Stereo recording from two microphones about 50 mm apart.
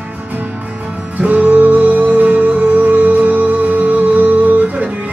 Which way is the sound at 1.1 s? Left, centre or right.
Right.